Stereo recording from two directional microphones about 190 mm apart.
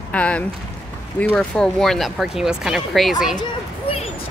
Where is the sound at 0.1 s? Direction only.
5° left (ahead or behind).